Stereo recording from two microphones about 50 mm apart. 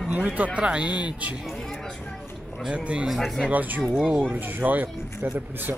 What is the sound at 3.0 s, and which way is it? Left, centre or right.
Speech, centre.